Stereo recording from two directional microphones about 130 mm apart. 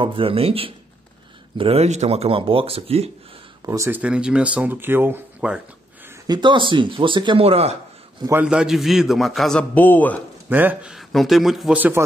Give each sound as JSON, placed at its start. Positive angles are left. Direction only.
{"t": 0.0, "sound": "speech", "side_deg": -45}
{"t": 3.6, "sound": "speech", "side_deg": -25}
{"t": 4.0, "sound": "speech", "side_deg": -10}
{"t": 6.2, "sound": "speech", "side_deg": -35}
{"t": 8.3, "sound": "a man's voice", "side_deg": -10}
{"t": 10.5, "sound": "a man's voice", "side_deg": -15}